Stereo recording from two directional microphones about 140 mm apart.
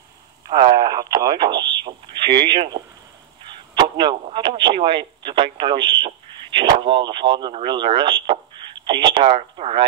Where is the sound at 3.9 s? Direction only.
35° right (ahead or behind).